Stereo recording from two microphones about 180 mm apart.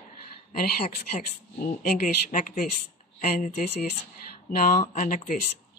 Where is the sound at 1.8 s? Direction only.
50° left (ahead or behind).